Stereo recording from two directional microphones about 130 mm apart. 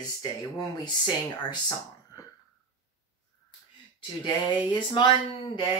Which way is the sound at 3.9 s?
35° left (ahead or behind).